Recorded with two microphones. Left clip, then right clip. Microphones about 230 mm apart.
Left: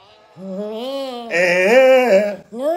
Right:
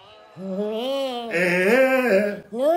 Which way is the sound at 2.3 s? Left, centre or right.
Centre.